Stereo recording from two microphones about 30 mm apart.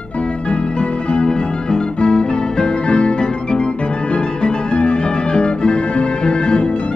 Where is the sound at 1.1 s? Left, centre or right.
Left.